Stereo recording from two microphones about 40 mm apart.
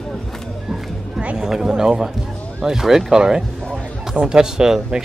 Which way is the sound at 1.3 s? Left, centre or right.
Centre.